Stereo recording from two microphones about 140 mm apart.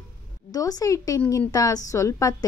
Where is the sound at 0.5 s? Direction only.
25° left (ahead or behind).